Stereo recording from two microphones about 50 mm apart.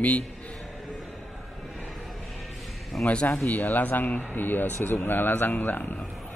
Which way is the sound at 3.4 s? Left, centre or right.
Left.